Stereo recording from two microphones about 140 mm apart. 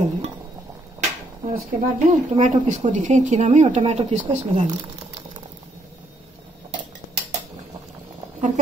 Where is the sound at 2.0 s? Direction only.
55° right (ahead or behind).